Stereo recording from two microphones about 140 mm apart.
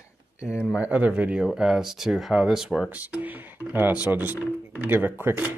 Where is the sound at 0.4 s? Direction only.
20° left (ahead or behind).